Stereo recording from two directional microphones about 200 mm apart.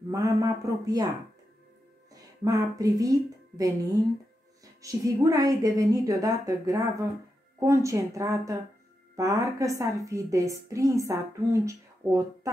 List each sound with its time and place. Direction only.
0.1 s a woman's voice: 15° right (ahead or behind)
2.4 s a woman's voice: 15° right (ahead or behind)